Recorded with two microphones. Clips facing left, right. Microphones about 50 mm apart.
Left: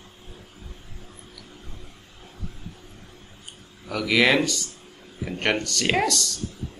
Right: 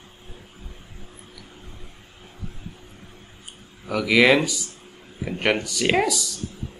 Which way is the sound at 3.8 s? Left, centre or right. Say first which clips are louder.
Right 3 dB; centre.